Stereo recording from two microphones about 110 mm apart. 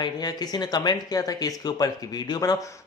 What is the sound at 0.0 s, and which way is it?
Speech, 40° left (ahead or behind).